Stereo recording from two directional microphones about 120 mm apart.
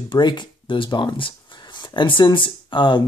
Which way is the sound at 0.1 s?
40° left (ahead or behind).